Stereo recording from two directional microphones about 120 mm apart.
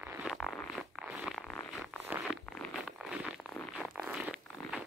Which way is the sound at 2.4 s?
5° left (ahead or behind).